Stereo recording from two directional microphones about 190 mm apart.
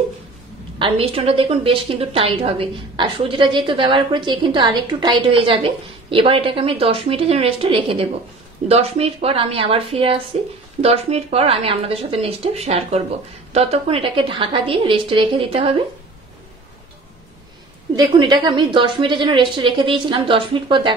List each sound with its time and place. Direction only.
0.7 s a woman's voice: 30° right (ahead or behind)
17.9 s a woman's voice: 25° right (ahead or behind)